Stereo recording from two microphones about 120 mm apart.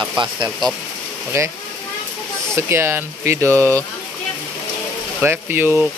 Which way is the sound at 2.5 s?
20° right (ahead or behind).